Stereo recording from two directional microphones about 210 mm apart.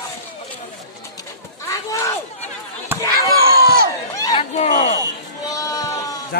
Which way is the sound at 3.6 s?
45° right (ahead or behind).